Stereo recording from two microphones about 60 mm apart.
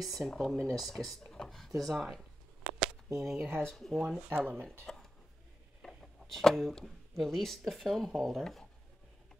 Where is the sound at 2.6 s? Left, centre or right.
Centre.